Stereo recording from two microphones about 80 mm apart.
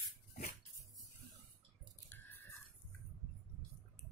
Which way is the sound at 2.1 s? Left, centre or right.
Left.